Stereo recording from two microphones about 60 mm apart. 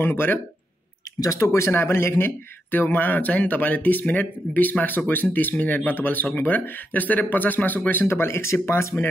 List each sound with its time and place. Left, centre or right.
0.0 s speech: left
1.2 s speech: left
1.7 s speech: left
8.1 s speech: left